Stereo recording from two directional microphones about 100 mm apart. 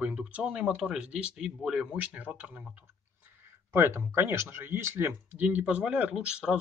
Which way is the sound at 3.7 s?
25° right (ahead or behind).